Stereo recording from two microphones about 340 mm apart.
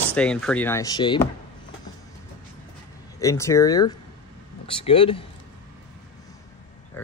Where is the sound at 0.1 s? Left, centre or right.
Centre.